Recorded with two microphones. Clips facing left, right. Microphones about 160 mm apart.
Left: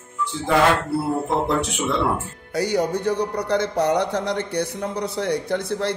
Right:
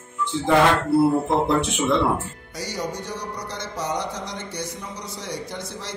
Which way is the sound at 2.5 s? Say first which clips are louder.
Left 9 dB; 60° left (ahead or behind).